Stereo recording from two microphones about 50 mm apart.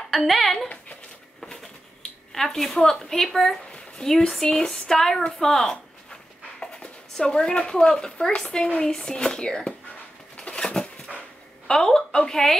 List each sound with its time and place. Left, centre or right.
0.1 s a child's voice: centre
2.3 s speech: centre
10.3 s dog: centre
11.6 s a woman's voice: centre